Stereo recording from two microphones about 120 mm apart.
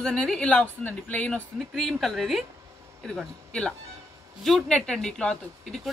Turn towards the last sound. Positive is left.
turn(degrees=5)  # may be behind; listen again after turning